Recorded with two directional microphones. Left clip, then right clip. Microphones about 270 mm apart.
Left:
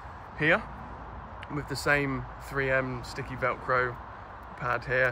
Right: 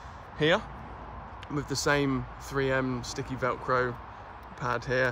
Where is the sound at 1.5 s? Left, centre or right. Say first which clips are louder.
Even; centre.